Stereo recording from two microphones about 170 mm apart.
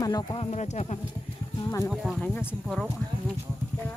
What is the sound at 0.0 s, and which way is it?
Speech, 20° left (ahead or behind).